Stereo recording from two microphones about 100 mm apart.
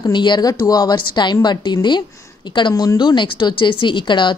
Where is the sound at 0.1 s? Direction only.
50° left (ahead or behind).